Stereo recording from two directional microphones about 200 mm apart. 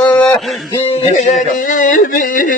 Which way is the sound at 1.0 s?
35° left (ahead or behind).